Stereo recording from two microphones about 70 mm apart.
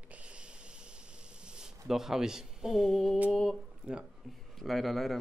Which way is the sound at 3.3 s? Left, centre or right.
Centre.